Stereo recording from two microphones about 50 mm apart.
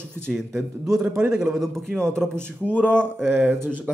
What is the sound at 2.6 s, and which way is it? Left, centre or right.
Speech, left.